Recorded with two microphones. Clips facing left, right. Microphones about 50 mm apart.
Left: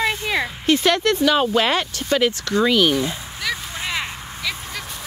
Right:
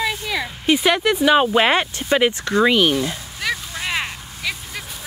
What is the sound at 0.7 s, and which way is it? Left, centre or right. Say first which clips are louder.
Speech: right 1 dB; centre.